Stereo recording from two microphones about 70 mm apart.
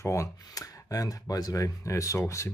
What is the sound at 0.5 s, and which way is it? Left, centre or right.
Speech, left.